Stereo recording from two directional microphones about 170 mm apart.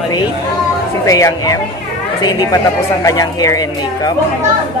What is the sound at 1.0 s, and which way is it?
A woman's voice, 20° left (ahead or behind).